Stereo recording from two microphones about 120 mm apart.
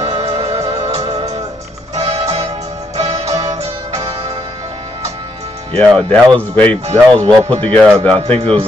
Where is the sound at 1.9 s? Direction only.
60° right (ahead or behind).